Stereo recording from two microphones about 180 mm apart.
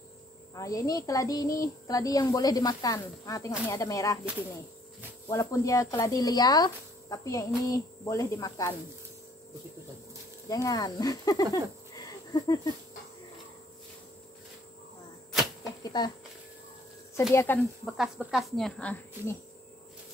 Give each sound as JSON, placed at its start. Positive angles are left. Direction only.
{"t": 0.6, "sound": "speech", "side_deg": 20}
{"t": 5.3, "sound": "speech", "side_deg": 20}
{"t": 10.5, "sound": "speech", "side_deg": 20}
{"t": 12.0, "sound": "a sound", "side_deg": 20}
{"t": 15.8, "sound": "speech", "side_deg": 25}
{"t": 17.3, "sound": "speech", "side_deg": 15}
{"t": 17.8, "sound": "speech", "side_deg": 0}